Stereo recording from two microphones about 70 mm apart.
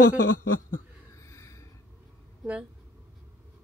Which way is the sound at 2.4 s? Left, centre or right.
Centre.